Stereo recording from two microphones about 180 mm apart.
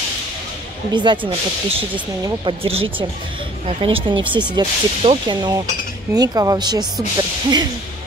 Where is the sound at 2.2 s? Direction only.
25° right (ahead or behind).